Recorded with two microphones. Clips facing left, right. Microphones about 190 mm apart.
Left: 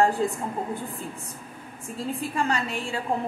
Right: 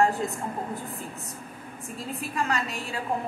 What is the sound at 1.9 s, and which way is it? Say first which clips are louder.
A woman's voice: left 3 dB; 30° left (ahead or behind).